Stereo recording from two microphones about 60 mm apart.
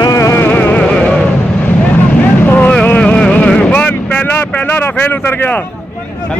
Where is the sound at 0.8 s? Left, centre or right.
Centre.